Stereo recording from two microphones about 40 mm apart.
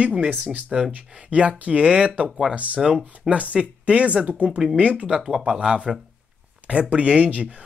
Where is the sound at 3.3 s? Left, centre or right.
Right.